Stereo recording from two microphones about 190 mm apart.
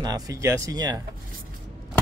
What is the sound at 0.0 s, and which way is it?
Speech, 20° right (ahead or behind).